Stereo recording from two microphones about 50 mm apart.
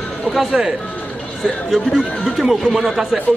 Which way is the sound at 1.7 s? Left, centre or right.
Centre.